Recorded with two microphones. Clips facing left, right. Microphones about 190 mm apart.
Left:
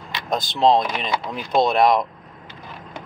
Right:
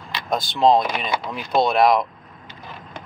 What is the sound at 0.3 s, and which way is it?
Speech, centre (ahead or behind).